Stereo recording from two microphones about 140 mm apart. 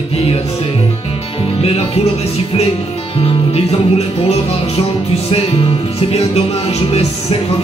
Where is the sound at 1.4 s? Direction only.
45° left (ahead or behind).